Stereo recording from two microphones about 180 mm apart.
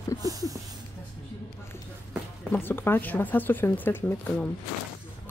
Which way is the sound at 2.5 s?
10° left (ahead or behind).